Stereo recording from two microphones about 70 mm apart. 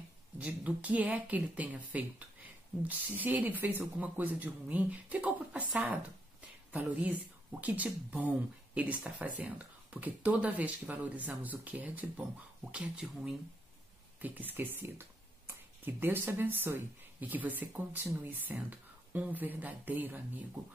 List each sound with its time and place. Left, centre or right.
0.4 s speech: right
6.7 s speech: right
14.2 s speech: right